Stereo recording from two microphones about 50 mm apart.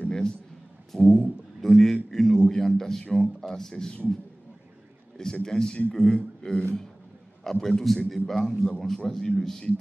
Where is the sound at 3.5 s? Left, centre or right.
Centre.